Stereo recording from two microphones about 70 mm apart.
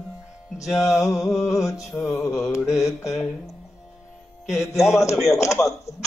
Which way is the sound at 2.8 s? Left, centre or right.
Left.